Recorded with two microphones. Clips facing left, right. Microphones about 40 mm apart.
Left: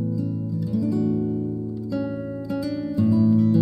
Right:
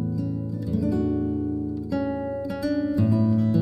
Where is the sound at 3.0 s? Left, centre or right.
Centre.